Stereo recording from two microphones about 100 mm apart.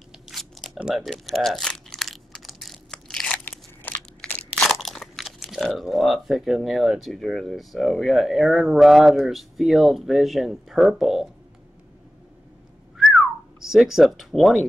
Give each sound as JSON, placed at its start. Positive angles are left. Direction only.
{"t": 0.3, "sound": "biting", "side_deg": 0}
{"t": 0.7, "sound": "crumpling", "side_deg": -5}
{"t": 3.4, "sound": "crunch", "side_deg": 20}
{"t": 4.2, "sound": "crunch", "side_deg": 5}
{"t": 4.7, "sound": "speech", "side_deg": 0}
{"t": 12.9, "sound": "whistling", "side_deg": 0}